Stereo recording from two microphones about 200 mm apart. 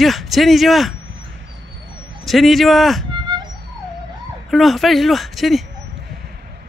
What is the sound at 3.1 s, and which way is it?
Music, 25° right (ahead or behind).